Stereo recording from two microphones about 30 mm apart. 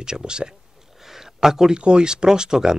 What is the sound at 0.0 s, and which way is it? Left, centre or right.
Speech, right.